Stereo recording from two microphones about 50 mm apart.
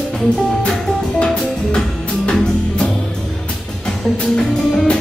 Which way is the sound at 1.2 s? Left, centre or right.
Centre.